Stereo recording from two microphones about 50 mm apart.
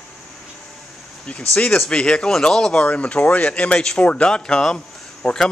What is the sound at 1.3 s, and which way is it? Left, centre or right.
Speech, left.